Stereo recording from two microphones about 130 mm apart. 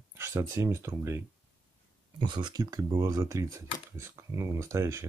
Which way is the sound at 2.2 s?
35° right (ahead or behind).